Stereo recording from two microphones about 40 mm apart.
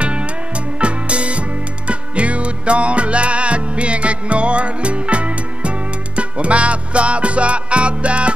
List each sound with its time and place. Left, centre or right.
0.0 s music: right